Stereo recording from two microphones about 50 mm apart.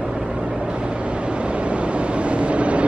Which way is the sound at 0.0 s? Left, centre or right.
Centre.